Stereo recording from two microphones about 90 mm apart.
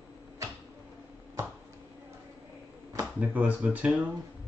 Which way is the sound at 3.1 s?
15° right (ahead or behind).